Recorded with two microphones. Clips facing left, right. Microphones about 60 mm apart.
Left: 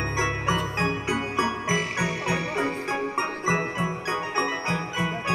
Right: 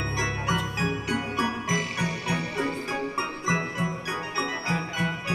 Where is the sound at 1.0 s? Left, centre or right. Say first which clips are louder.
Left 2 dB; left.